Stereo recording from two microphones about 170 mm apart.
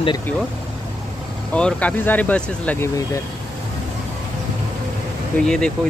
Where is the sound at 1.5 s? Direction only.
5° left (ahead or behind).